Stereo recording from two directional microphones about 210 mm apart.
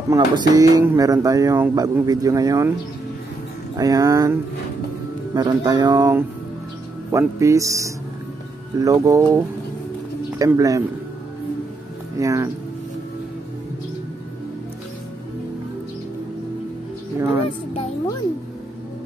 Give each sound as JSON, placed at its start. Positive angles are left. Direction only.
{"t": 0.1, "sound": "speech", "side_deg": -15}
{"t": 3.7, "sound": "speech", "side_deg": -15}
{"t": 10.4, "sound": "speech", "side_deg": -15}
{"t": 12.2, "sound": "speech", "side_deg": -15}